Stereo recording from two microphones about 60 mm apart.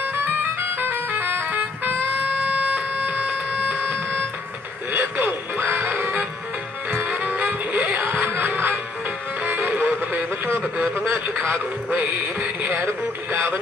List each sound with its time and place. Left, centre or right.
0.1 s music: right
2.3 s a sound: right
4.9 s music: right
10.8 s radio: right
11.9 s music: right